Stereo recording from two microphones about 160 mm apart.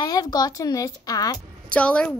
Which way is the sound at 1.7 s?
5° left (ahead or behind).